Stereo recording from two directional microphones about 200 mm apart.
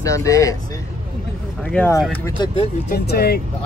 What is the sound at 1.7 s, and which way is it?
Speech, 5° left (ahead or behind).